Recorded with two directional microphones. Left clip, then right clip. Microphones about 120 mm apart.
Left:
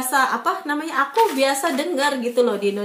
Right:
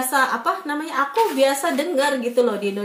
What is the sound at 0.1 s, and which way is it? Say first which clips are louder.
A woman's voice: left 1 dB; centre (ahead or behind).